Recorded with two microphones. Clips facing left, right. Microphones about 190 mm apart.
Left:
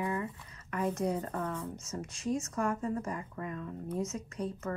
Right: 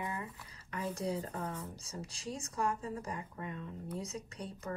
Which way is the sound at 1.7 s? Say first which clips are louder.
Left 5 dB; 35° right (ahead or behind).